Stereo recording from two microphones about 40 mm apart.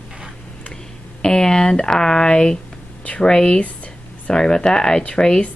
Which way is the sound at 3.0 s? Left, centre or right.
Left.